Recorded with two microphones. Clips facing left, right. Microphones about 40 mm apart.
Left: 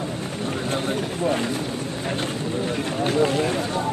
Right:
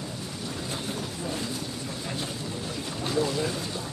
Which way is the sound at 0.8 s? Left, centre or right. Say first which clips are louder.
Left 10 dB; left.